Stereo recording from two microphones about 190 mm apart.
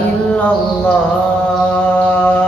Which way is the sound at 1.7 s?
5° left (ahead or behind).